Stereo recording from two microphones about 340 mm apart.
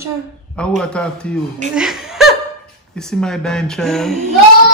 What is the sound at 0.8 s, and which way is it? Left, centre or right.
A woman's voice, centre.